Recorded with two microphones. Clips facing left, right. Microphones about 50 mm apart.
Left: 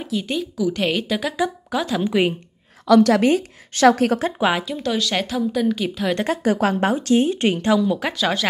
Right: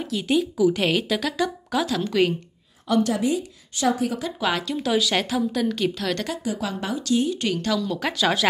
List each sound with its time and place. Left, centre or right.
0.0 s a woman's voice: centre
2.0 s a woman's voice: centre
2.9 s a woman's voice: left
3.3 s a woman's voice: left
4.4 s a woman's voice: left
4.6 s a woman's voice: centre
6.2 s speech: left; by 8.1 s centre
8.1 s a woman's voice: centre